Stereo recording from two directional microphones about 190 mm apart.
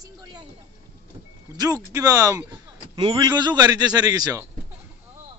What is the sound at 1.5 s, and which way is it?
Speech, 20° right (ahead or behind).